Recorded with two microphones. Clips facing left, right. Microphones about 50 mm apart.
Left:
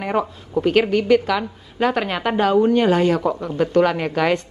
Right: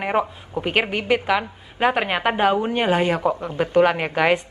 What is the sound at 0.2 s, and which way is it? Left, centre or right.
A woman's voice, centre.